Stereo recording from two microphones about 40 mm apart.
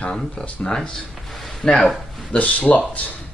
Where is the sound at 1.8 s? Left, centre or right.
Centre.